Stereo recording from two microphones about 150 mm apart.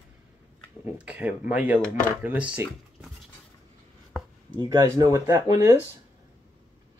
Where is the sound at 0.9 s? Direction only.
10° right (ahead or behind).